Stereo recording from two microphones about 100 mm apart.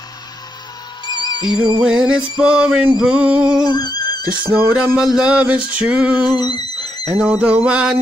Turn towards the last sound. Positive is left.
turn(degrees=-10)  # may be behind; listen again after turning